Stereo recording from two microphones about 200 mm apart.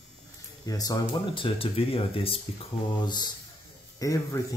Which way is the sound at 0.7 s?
20° left (ahead or behind).